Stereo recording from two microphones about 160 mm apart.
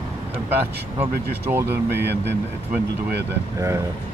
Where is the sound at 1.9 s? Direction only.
90° right.